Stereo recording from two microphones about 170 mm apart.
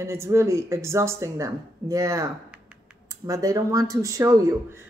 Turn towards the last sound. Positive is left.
turn(degrees=-20)  # may be behind; listen again after turning